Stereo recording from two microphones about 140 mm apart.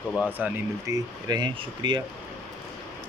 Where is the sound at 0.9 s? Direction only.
30° right (ahead or behind).